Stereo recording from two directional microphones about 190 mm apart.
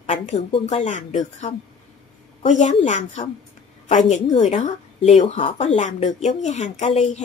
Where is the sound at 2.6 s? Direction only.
40° left (ahead or behind).